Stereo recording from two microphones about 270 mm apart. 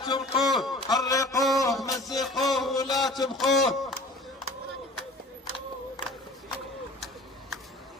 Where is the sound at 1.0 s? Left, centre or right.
Centre.